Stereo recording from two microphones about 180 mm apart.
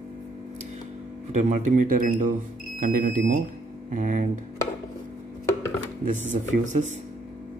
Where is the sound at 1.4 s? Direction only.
45° right (ahead or behind).